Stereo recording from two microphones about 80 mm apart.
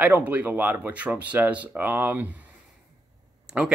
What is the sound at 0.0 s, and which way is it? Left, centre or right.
Speech, centre.